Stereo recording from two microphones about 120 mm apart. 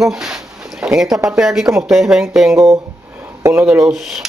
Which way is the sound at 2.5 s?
30° right (ahead or behind).